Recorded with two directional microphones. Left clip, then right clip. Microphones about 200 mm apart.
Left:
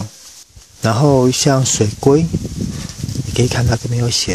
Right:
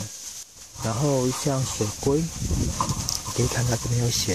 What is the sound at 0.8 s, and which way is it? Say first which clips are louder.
Speech: left 11 dB; 45° left (ahead or behind).